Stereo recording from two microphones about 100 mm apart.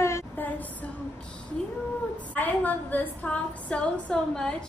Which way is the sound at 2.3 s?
15° left (ahead or behind).